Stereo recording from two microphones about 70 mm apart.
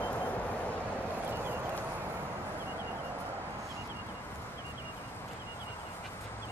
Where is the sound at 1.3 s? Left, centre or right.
Right.